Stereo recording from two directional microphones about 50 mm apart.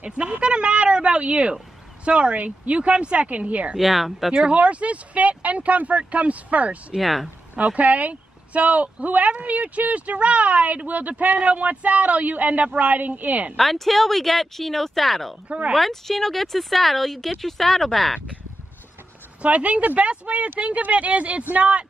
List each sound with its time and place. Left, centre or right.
0.0 s a sound: right
2.0 s speech: right
3.7 s speech: centre
4.3 s speech: centre
4.6 s speech: right
7.0 s speech: centre
7.5 s speech: right
13.6 s speech: centre
15.4 s speech: right
15.7 s speech: centre
19.4 s speech: right